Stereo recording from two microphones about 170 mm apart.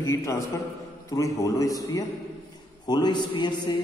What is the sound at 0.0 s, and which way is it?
A man's voice, 15° left (ahead or behind).